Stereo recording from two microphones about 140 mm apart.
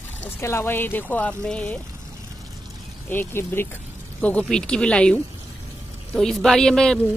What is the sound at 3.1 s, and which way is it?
Speech, 15° left (ahead or behind).